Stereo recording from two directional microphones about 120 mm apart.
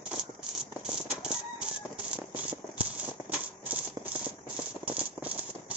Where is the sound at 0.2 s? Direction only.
5° right (ahead or behind).